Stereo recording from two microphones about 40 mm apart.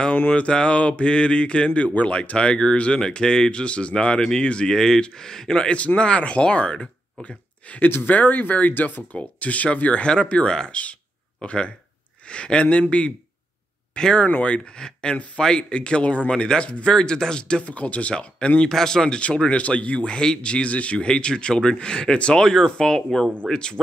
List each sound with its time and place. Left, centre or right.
0.3 s speech: left
4.2 s speech: centre
7.8 s speech: left
8.1 s speech: left
14.1 s speech: left
16.3 s speech: left
17.6 s speech: left
18.7 s speech: centre
19.3 s speech: left
21.1 s speech: left
22.4 s speech: centre
23.5 s speech: left